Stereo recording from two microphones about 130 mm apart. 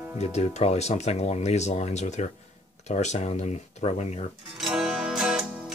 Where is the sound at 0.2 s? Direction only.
55° left (ahead or behind).